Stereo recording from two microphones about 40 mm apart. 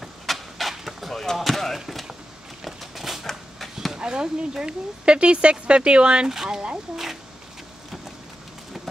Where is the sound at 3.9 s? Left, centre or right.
Centre.